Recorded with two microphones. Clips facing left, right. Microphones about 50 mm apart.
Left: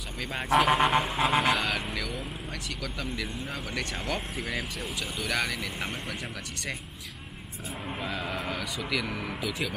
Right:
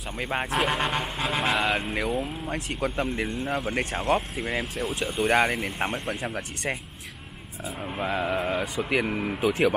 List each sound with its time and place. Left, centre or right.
0.2 s speech: right
0.5 s speech: centre
1.6 s speech: right
8.0 s speech: right